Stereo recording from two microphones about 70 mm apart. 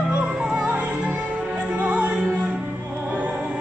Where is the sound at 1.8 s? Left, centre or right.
Right.